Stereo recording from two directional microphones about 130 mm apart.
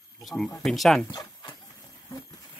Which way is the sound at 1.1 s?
35° left (ahead or behind).